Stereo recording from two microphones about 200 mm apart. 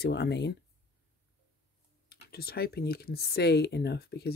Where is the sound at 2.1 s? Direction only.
50° left (ahead or behind).